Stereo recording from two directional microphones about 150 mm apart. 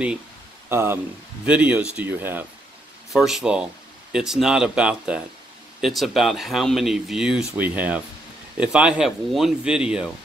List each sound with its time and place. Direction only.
0.7 s speech: 15° right (ahead or behind)
3.1 s speech: centre (ahead or behind)